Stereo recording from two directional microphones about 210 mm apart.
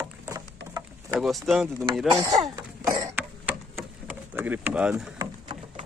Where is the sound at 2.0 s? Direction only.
15° right (ahead or behind).